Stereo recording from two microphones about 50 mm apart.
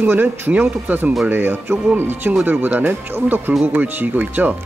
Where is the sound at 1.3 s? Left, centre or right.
Right.